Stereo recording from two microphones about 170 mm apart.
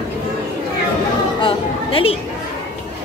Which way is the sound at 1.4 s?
30° left (ahead or behind).